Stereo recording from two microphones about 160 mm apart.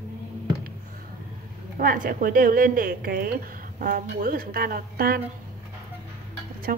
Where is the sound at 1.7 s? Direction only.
60° right (ahead or behind).